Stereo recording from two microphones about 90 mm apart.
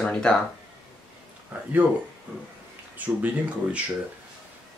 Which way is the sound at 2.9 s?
15° right (ahead or behind).